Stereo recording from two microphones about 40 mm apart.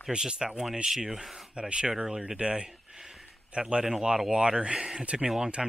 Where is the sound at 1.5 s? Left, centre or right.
Right.